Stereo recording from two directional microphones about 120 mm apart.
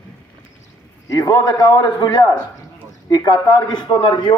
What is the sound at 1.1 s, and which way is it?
A man's voice, 30° left (ahead or behind).